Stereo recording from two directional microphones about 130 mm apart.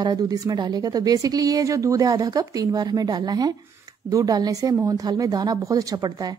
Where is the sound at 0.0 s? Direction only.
30° right (ahead or behind).